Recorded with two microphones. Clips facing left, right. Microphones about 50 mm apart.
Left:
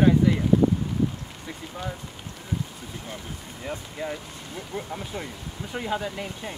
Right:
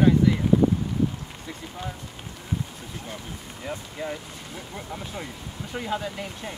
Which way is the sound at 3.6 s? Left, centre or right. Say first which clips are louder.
Even; centre.